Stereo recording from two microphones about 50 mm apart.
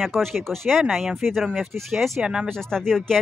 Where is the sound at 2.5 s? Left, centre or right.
Centre.